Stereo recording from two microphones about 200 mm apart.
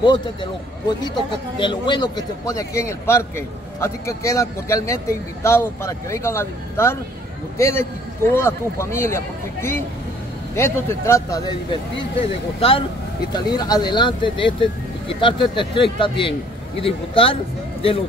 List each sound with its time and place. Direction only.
0.0 s a man's voice: 25° left (ahead or behind)